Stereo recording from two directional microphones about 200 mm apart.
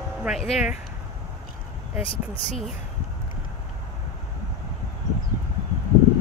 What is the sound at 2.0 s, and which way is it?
Speech, 25° left (ahead or behind).